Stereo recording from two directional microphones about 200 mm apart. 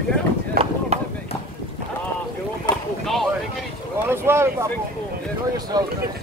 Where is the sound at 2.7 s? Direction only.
20° left (ahead or behind).